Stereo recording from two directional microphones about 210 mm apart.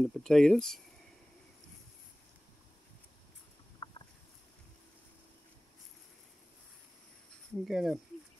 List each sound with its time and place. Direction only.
0.0 s speech: centre (ahead or behind)
3.8 s a sound: 20° left (ahead or behind)
7.6 s speech: centre (ahead or behind)